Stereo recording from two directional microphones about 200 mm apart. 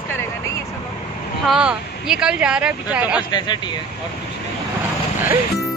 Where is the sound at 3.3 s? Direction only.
20° left (ahead or behind).